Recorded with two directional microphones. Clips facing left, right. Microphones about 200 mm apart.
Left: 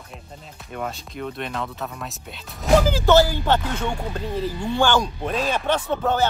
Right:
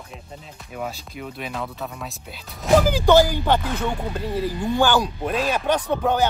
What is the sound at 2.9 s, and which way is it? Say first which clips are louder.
Speech: right 1 dB; 15° right (ahead or behind).